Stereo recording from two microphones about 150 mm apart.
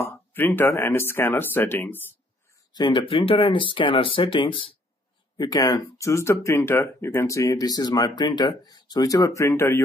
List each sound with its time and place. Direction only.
0.0 s speech: 15° left (ahead or behind)
2.7 s speech: 30° left (ahead or behind)